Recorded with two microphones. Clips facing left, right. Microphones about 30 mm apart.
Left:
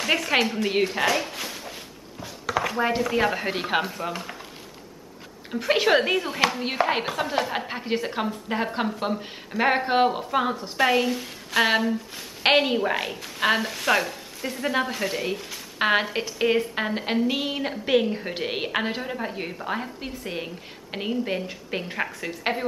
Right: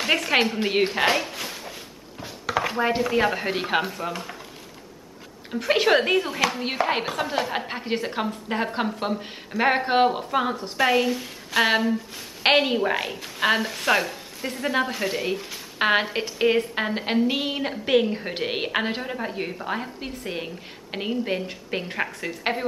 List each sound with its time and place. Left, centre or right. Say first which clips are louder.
0.0 s a woman's voice: right 1 dB; centre
0.8 s speech: right 2 dB; right
1.1 s cupboard open or close: right 1 dB; centre
2.2 s speech: right 1 dB; centre
5.5 s a woman's voice: right 1 dB; centre